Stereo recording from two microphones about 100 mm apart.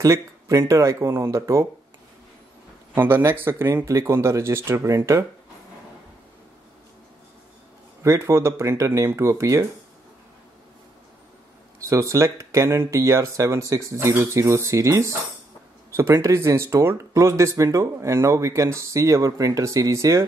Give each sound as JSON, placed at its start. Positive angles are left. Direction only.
{"t": 0.0, "sound": "speech", "side_deg": -30}
{"t": 2.9, "sound": "speech", "side_deg": -20}
{"t": 8.0, "sound": "speech", "side_deg": -30}
{"t": 11.8, "sound": "speech", "side_deg": -30}